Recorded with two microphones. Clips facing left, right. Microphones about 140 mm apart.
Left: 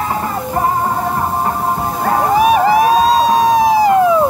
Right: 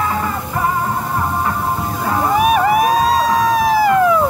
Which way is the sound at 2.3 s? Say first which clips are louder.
Left 2 dB; 30° left (ahead or behind).